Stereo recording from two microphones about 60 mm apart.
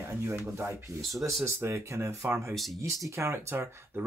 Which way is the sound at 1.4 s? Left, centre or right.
Right.